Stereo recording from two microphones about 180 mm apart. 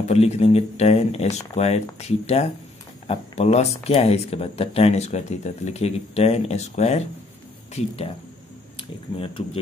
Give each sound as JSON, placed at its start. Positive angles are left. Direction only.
{"t": 0.1, "sound": "speech", "side_deg": 35}